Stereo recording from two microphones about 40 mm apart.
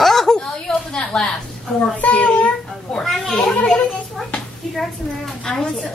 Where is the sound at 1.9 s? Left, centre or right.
Left.